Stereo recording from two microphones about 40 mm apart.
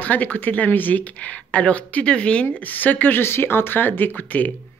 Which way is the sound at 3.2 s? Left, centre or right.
Left.